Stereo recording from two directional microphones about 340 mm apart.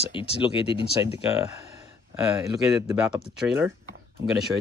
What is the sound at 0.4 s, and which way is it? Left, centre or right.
Speech, centre.